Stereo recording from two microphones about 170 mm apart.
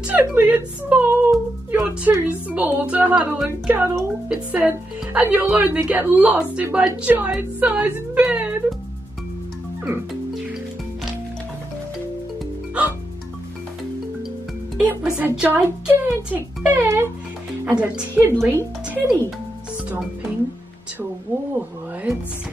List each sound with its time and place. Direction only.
0.0 s speech: 10° right (ahead or behind)
14.9 s speech: 10° right (ahead or behind)
21.5 s speech: 10° right (ahead or behind)